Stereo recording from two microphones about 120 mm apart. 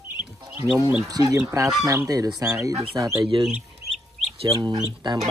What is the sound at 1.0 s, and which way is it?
Speech, 30° right (ahead or behind).